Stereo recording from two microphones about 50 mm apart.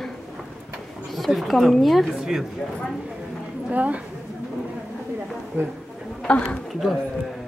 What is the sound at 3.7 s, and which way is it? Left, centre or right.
Speech, right.